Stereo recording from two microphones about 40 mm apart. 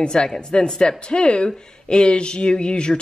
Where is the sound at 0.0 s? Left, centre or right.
Left.